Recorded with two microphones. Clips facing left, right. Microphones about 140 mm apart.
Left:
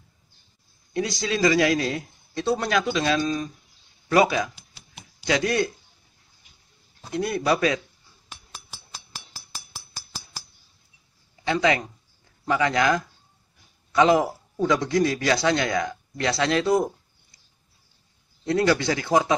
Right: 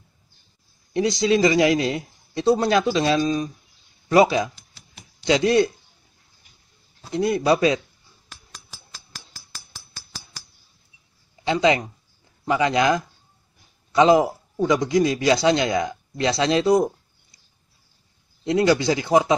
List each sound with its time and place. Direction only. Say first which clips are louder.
0.9 s a man's voice: right 7 dB; 20° right (ahead or behind)
7.1 s a man's voice: right 4 dB; 20° right (ahead or behind)
11.4 s a man's voice: right 3 dB; 20° right (ahead or behind)
18.4 s a man's voice: right 3 dB; 15° right (ahead or behind)